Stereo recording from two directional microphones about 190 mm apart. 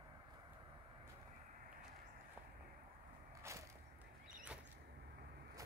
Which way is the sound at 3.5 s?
15° right (ahead or behind).